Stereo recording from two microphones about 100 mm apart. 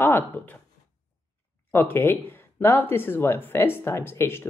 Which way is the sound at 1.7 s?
20° left (ahead or behind).